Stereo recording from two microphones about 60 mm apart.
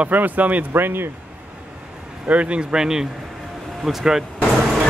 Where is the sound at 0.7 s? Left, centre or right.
Right.